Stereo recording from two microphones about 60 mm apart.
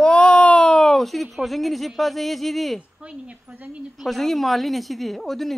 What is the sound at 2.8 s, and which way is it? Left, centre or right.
Speech, centre.